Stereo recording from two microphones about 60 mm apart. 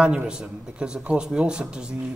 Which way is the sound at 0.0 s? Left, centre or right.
Centre.